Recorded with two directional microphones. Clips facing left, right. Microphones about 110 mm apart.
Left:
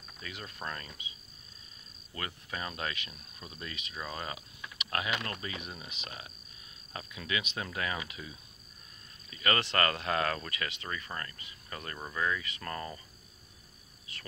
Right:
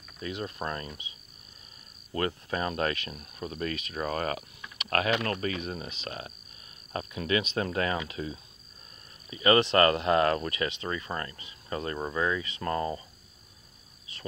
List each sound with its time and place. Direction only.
0.2 s speech: 30° right (ahead or behind)
2.1 s speech: 40° right (ahead or behind)
3.2 s speech: 55° right (ahead or behind)
5.6 s speech: 40° right (ahead or behind)
9.3 s speech: 25° right (ahead or behind)